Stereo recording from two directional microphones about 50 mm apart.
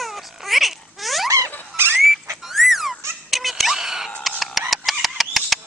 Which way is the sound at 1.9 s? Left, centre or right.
Centre.